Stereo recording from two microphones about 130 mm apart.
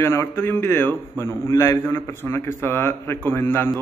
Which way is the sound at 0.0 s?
20° left (ahead or behind).